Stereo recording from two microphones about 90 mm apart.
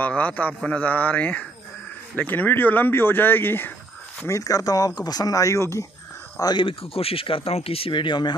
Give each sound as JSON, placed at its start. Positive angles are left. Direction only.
{"t": 0.0, "sound": "a man's voice", "side_deg": 15}
{"t": 4.3, "sound": "speech", "side_deg": 40}
{"t": 6.6, "sound": "speech", "side_deg": 90}